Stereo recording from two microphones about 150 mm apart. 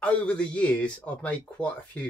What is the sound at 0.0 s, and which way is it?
Speech, 5° left (ahead or behind).